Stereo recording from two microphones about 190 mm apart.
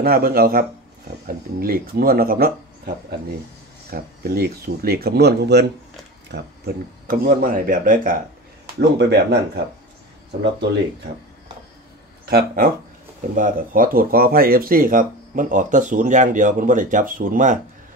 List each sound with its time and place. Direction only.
0.0 s speech: 50° right (ahead or behind)
8.7 s speech: 60° right (ahead or behind)
12.3 s speech: 50° right (ahead or behind)